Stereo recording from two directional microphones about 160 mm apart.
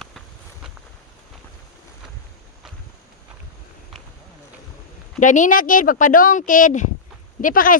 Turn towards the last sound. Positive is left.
turn(degrees=60)  # may be behind; listen again after turning